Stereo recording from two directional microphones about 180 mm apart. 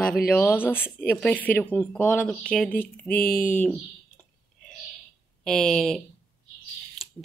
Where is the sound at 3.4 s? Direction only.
10° left (ahead or behind).